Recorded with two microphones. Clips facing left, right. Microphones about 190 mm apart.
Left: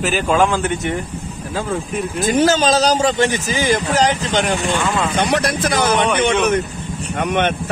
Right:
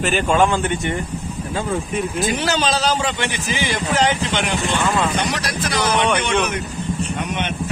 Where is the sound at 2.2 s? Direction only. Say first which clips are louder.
Left 9 dB; 45° left (ahead or behind).